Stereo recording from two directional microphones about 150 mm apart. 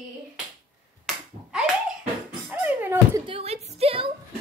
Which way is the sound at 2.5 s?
10° right (ahead or behind).